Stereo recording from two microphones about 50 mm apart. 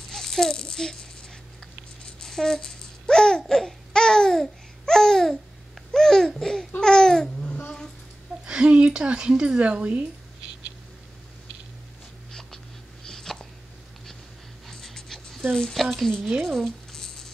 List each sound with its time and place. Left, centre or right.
0.1 s a child's voice: centre
2.0 s rattle: centre
5.9 s babbling: centre
6.8 s laughter: centre
8.5 s speech: right
12.3 s a sound: centre
14.7 s a sound: centre
15.7 s a woman's voice: centre
16.4 s rattle: centre